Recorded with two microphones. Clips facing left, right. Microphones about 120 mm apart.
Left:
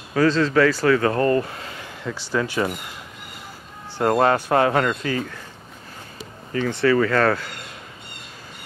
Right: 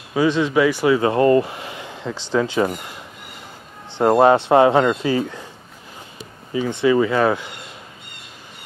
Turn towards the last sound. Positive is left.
turn(degrees=-15)  # may be behind; listen again after turning